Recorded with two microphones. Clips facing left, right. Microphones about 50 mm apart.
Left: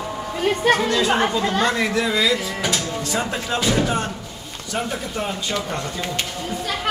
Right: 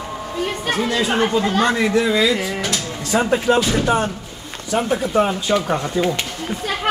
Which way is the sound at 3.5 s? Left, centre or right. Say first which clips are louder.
Right 11 dB; right.